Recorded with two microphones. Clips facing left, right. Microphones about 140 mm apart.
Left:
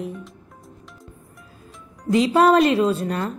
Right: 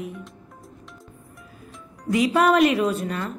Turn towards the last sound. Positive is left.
turn(degrees=35)  # may be behind; listen again after turning